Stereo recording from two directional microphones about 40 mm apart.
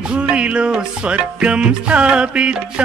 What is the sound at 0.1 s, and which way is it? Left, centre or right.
Music, right.